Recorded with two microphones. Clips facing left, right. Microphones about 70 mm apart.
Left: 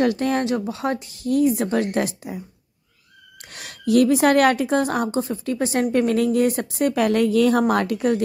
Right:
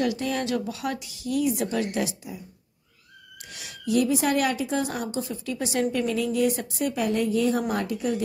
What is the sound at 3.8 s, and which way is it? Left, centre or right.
A woman's voice, left.